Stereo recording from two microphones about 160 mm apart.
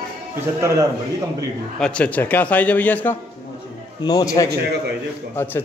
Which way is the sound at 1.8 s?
5° left (ahead or behind).